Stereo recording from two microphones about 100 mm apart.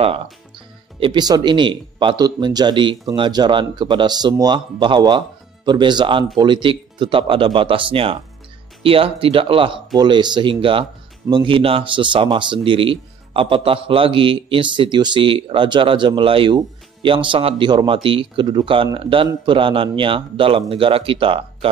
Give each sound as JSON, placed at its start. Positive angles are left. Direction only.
{"t": 0.9, "sound": "speech", "side_deg": -60}
{"t": 1.2, "sound": "speech", "side_deg": -45}
{"t": 9.9, "sound": "speech", "side_deg": -50}